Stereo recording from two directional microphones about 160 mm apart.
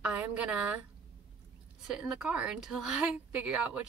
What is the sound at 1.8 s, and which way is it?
Speech, 5° right (ahead or behind).